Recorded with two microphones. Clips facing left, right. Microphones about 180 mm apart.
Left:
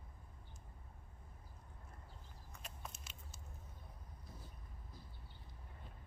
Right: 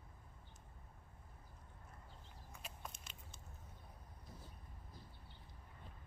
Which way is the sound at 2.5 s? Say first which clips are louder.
Even; centre (ahead or behind).